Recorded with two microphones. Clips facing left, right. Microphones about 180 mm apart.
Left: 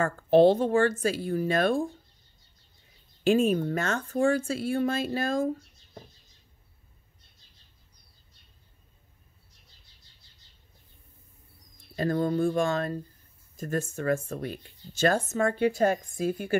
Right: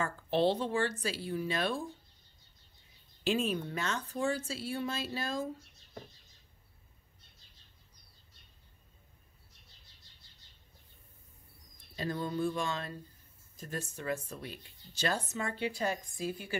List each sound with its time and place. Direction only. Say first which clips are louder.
0.0 s speech: left 10 dB; 50° left (ahead or behind)
3.3 s speech: left 9 dB; 50° left (ahead or behind)
11.9 s speech: left 9 dB; 50° left (ahead or behind)